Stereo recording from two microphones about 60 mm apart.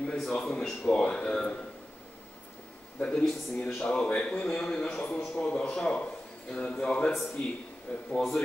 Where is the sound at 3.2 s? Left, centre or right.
Centre.